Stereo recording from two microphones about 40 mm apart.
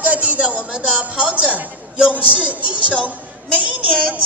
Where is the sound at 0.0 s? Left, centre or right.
Right.